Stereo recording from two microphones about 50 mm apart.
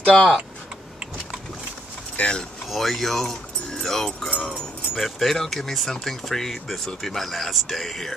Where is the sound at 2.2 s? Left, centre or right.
Left.